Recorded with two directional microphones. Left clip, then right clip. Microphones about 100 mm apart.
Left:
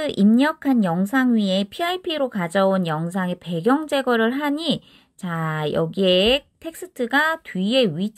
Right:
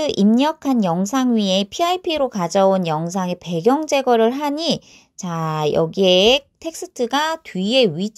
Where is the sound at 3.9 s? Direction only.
35° right (ahead or behind).